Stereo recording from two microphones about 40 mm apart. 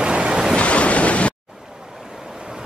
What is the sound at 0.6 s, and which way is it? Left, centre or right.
Waves, left.